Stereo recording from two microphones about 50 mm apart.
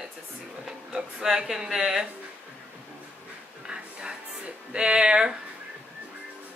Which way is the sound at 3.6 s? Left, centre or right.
Centre.